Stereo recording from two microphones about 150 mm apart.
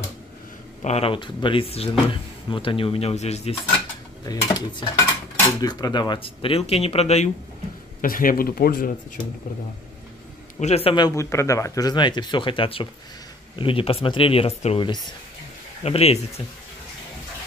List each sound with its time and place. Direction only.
0.8 s speech: 40° left (ahead or behind)
4.3 s speech: 25° left (ahead or behind); by 7.2 s 45° left (ahead or behind)
8.0 s speech: 70° left (ahead or behind)
10.6 s speech: 40° left (ahead or behind)
11.1 s speech: 20° left (ahead or behind); by 14.8 s 45° left (ahead or behind)
15.8 s speech: 45° left (ahead or behind)